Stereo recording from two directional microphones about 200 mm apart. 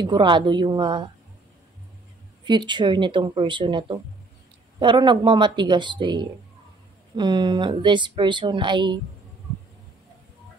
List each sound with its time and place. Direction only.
0.0 s speech: 25° right (ahead or behind)
2.4 s speech: 20° right (ahead or behind)